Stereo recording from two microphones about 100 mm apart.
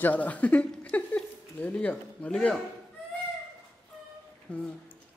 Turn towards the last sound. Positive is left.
turn(degrees=10)  # may be behind; listen again after turning